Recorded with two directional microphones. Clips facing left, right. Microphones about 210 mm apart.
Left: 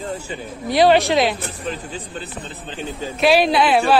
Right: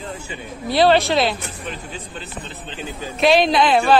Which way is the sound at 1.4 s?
35° left (ahead or behind).